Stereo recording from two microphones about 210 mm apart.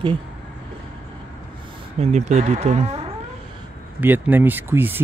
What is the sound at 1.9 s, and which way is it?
Speech, 35° right (ahead or behind).